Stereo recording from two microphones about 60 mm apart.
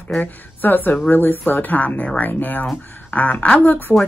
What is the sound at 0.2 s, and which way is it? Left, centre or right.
A woman's voice, left.